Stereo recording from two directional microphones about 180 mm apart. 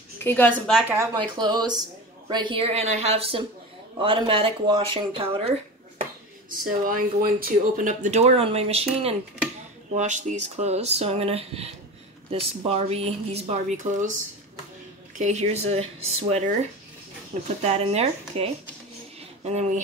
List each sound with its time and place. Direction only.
0.2 s a woman's voice: 10° left (ahead or behind)
0.7 s a woman's voice: 5° right (ahead or behind)
0.9 s speech: 25° right (ahead or behind)
6.6 s speech: 50° right (ahead or behind)
15.1 s speech: 40° right (ahead or behind)